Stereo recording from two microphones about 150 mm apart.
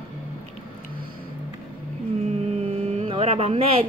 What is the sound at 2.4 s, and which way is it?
Vehicle, 45° right (ahead or behind).